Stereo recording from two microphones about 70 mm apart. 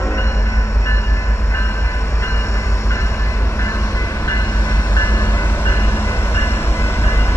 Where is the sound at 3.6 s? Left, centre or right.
Left.